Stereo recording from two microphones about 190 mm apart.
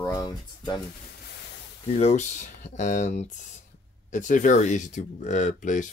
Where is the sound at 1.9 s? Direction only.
35° left (ahead or behind).